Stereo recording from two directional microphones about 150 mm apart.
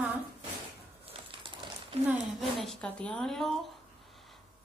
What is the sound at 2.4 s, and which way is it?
Speech, centre (ahead or behind).